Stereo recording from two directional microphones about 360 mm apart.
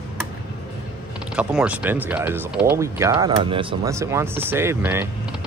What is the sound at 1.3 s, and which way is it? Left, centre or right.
Speech, centre.